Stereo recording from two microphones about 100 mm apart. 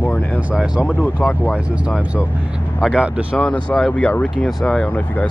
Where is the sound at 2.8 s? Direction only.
5° right (ahead or behind).